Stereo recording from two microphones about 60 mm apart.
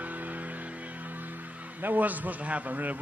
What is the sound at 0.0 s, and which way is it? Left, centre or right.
Speech, right.